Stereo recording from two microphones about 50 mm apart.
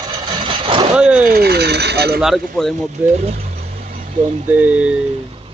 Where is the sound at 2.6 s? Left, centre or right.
Centre.